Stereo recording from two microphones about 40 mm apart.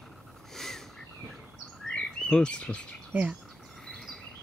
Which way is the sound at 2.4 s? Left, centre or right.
Left.